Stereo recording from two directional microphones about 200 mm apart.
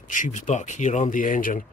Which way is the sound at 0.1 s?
40° left (ahead or behind).